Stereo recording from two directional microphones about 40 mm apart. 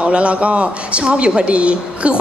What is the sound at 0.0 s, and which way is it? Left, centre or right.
Speech, right.